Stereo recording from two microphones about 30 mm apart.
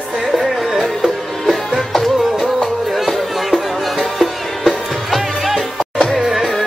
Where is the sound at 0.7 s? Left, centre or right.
Centre.